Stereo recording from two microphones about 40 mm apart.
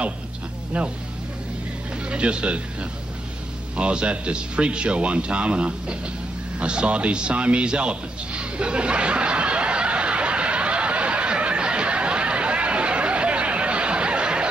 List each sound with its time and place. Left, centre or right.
0.7 s speech: right
2.0 s speech: right
6.6 s music: right